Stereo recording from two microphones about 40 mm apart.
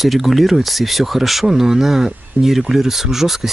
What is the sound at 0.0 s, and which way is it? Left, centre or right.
Speech, centre.